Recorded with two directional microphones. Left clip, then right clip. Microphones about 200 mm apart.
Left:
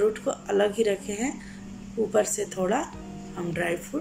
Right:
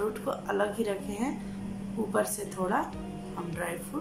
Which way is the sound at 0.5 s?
5° left (ahead or behind).